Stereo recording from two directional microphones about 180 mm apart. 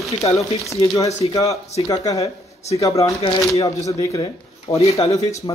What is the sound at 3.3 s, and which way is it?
Speech, 20° left (ahead or behind).